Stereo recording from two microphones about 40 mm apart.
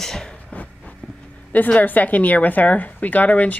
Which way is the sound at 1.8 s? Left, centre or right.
Left.